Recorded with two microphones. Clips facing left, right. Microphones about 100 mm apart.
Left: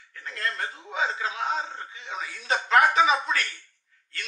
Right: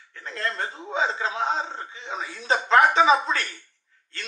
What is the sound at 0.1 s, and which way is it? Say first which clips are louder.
A man's voice: right 2 dB; 30° right (ahead or behind).